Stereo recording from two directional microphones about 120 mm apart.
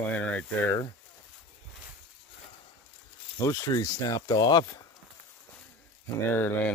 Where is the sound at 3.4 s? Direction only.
30° left (ahead or behind).